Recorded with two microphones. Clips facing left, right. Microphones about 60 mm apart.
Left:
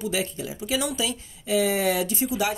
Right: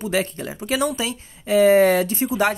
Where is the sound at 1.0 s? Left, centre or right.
Right.